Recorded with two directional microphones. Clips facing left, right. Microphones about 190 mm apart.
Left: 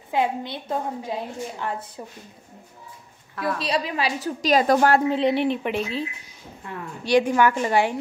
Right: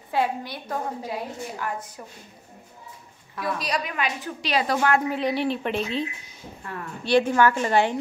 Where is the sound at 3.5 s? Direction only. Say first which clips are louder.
Left 4 dB; 30° left (ahead or behind); by 4.9 s 45° left (ahead or behind).